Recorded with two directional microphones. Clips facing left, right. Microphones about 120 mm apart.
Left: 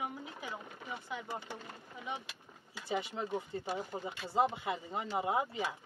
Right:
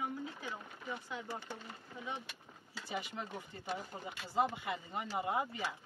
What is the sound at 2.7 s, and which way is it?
Speech, 25° left (ahead or behind).